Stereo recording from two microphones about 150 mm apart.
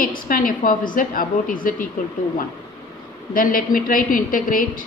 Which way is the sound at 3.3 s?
70° left (ahead or behind).